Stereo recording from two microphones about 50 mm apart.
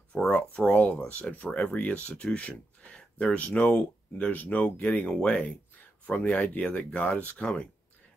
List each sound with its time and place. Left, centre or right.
0.3 s speech: left